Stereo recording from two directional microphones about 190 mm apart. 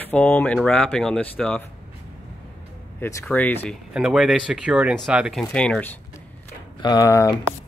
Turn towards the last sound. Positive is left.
turn(degrees=20)  # may be behind; listen again after turning